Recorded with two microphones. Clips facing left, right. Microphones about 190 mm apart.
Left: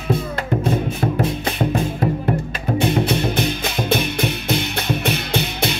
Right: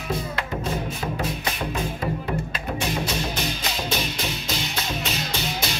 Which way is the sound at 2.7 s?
60° left (ahead or behind).